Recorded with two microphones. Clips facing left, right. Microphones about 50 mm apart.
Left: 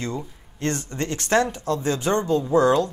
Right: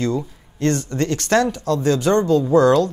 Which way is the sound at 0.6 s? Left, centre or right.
Left.